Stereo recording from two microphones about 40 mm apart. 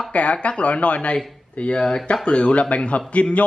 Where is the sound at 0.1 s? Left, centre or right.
Left.